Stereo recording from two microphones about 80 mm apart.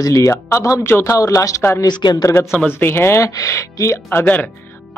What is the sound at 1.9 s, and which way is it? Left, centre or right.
Speech, left.